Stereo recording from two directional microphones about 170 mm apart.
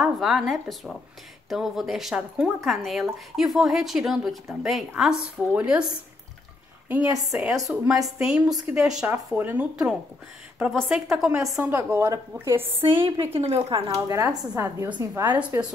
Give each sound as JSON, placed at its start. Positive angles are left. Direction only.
{"t": 0.0, "sound": "speech", "side_deg": 0}
{"t": 7.3, "sound": "a woman's voice", "side_deg": 0}
{"t": 12.7, "sound": "a woman's voice", "side_deg": -30}
{"t": 14.0, "sound": "a woman's voice", "side_deg": -20}
{"t": 15.0, "sound": "speech", "side_deg": -25}
{"t": 15.5, "sound": "a woman's voice", "side_deg": -15}